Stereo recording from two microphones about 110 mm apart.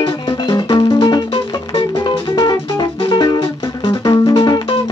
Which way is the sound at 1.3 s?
55° left (ahead or behind).